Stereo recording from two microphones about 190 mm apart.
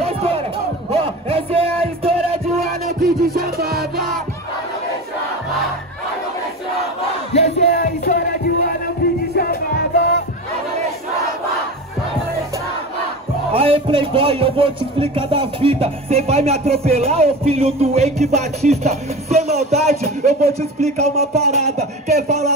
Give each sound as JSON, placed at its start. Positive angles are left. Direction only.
{"t": 0.0, "sound": "crowd", "side_deg": -30}
{"t": 1.0, "sound": "music", "side_deg": -30}
{"t": 2.9, "sound": "music", "side_deg": -50}
{"t": 7.3, "sound": "battle cry", "side_deg": 35}
{"t": 7.8, "sound": "music", "side_deg": 45}
{"t": 13.5, "sound": "a man's voice", "side_deg": -30}
{"t": 18.3, "sound": "music", "side_deg": -35}